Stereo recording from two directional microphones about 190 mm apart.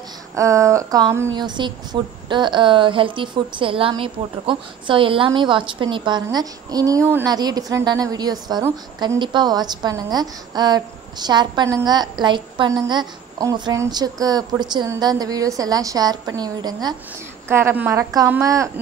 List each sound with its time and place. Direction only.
0.4 s a woman's voice: 15° right (ahead or behind)